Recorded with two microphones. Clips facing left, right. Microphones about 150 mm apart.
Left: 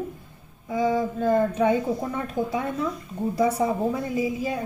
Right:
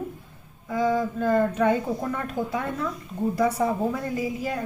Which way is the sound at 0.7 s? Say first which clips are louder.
Even; 15° left (ahead or behind).